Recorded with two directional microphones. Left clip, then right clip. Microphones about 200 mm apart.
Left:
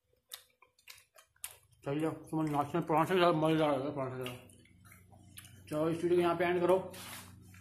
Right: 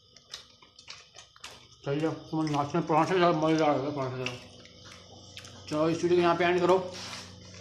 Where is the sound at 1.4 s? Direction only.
55° left (ahead or behind).